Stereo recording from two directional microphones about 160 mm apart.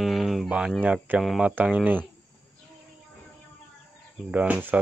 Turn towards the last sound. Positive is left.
turn(degrees=-10)  # may be behind; listen again after turning